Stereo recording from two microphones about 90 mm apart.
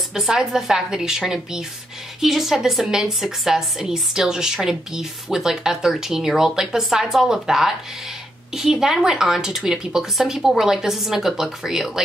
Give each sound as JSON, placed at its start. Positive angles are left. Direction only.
{"t": 0.1, "sound": "a woman's voice", "side_deg": -5}